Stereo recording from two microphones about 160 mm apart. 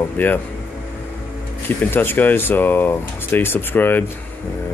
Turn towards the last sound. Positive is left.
turn(degrees=10)  # may be behind; listen again after turning